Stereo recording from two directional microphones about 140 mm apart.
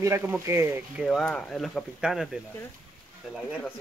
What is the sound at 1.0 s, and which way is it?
Speech, centre (ahead or behind).